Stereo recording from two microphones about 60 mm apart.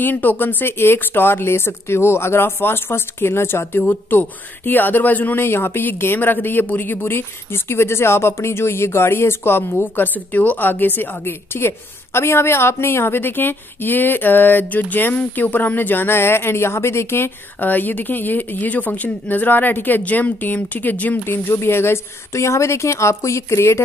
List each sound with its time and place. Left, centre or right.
0.0 s speech: left